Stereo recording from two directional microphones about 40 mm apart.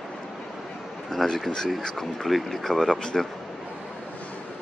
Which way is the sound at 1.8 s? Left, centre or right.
Centre.